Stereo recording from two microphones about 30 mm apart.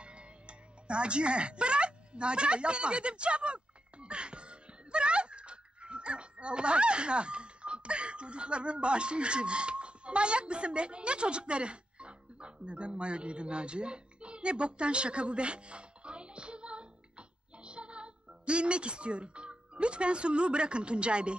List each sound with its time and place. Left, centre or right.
0.0 s music: right
17.6 s speech: right